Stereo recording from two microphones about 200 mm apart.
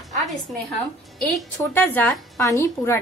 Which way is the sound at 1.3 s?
10° left (ahead or behind).